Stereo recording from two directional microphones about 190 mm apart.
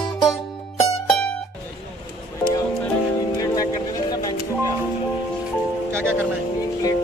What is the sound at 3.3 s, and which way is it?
Music, 20° left (ahead or behind).